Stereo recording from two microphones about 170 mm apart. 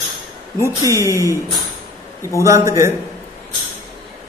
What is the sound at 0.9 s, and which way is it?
A man's voice, 15° right (ahead or behind).